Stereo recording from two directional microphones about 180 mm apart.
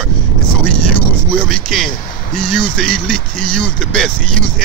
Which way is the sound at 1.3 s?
5° left (ahead or behind).